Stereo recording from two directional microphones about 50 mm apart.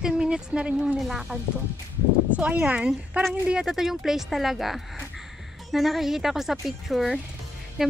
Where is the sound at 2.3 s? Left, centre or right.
Right.